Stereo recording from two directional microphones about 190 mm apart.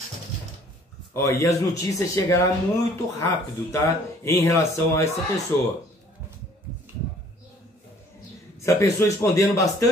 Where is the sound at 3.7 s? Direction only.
15° left (ahead or behind).